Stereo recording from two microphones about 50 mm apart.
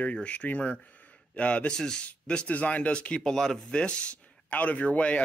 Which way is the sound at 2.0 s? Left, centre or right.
Left.